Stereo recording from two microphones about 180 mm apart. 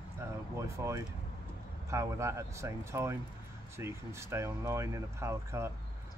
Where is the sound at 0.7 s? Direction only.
15° right (ahead or behind).